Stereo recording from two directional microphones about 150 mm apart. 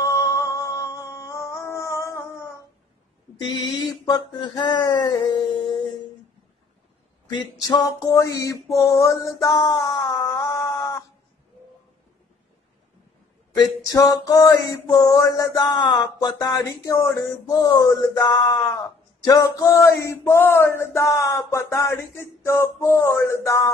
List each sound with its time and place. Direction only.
0.0 s music: 20° left (ahead or behind)
4.0 s mantra: 25° left (ahead or behind)
7.2 s a sound: 25° left (ahead or behind)
13.8 s mantra: 20° left (ahead or behind)